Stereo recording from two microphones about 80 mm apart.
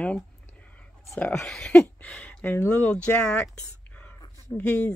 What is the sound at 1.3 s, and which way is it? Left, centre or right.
Speech, centre.